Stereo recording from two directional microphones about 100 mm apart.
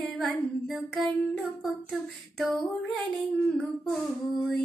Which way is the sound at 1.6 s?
Centre (ahead or behind).